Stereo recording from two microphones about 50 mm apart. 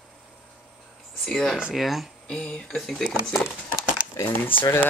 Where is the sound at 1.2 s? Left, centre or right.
Centre.